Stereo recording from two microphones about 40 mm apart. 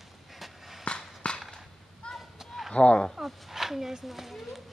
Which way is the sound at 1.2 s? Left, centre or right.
Left.